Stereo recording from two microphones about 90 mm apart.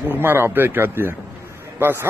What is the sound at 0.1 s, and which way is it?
Speech, 25° right (ahead or behind).